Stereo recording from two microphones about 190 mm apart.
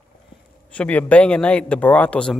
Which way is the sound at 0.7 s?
5° left (ahead or behind).